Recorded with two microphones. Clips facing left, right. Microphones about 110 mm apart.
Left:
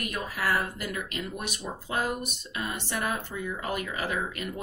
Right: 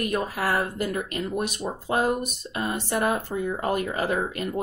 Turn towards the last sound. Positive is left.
turn(degrees=-35)  # may be behind; listen again after turning